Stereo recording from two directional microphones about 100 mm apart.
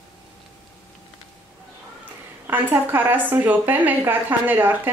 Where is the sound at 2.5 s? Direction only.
20° right (ahead or behind).